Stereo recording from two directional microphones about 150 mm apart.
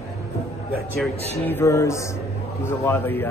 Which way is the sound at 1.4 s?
15° left (ahead or behind).